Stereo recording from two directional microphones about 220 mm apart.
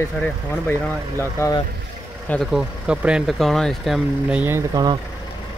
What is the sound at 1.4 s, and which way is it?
Speech, 15° left (ahead or behind).